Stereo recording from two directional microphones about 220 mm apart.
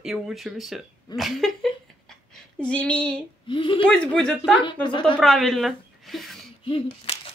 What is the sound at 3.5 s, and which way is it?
Speech, 25° left (ahead or behind).